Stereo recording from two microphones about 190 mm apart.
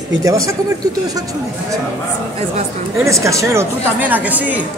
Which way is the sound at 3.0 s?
15° right (ahead or behind).